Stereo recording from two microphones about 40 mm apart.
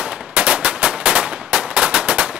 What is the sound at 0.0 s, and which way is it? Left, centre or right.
Gunshot, right.